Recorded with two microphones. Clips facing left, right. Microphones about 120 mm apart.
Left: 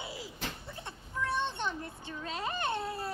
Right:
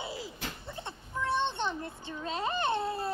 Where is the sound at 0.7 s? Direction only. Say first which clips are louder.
Right 3 dB; 25° right (ahead or behind).